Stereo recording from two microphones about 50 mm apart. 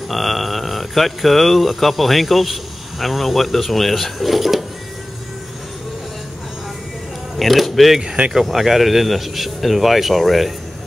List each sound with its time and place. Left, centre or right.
0.1 s speech: centre
7.3 s a sound: centre
8.0 s speech: centre
8.3 s speech: centre